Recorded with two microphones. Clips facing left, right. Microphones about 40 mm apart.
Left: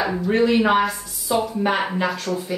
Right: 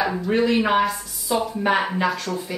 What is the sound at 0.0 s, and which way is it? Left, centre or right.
Speech, centre.